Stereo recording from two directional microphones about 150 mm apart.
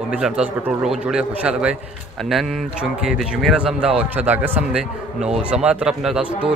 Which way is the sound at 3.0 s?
5° right (ahead or behind).